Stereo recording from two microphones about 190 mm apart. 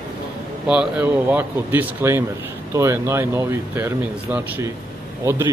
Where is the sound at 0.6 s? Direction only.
5° right (ahead or behind).